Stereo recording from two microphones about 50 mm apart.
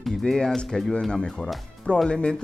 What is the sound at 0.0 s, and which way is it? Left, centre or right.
Speech, centre.